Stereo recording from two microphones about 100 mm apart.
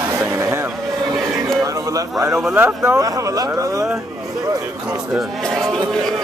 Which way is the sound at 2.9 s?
35° right (ahead or behind).